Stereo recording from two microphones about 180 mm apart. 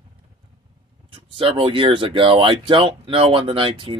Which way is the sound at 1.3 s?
30° right (ahead or behind).